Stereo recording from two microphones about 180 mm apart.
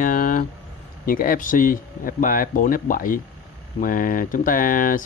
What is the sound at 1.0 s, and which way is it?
Speech, 50° left (ahead or behind).